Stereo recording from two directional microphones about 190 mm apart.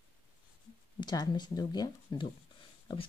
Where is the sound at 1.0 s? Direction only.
20° left (ahead or behind).